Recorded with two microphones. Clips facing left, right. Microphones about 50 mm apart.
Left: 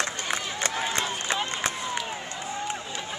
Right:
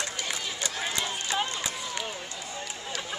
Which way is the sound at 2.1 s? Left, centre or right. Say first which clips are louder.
Left 4 dB; left.